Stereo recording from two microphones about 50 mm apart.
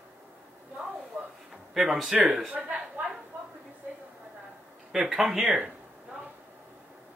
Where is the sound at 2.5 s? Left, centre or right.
Right.